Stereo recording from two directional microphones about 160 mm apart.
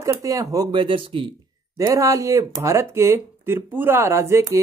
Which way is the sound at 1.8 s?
20° right (ahead or behind).